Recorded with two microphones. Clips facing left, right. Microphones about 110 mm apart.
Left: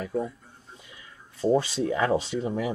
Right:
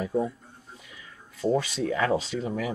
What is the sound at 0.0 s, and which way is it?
Speech, 15° right (ahead or behind).